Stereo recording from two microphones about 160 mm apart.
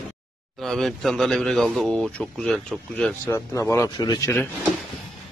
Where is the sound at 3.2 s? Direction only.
15° left (ahead or behind).